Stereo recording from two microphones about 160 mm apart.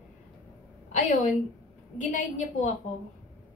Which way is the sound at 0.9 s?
55° left (ahead or behind).